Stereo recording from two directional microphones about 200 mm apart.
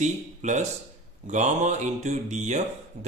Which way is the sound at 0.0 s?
35° right (ahead or behind).